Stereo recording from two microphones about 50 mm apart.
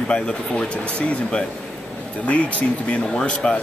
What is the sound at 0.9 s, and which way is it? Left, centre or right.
Speech, left.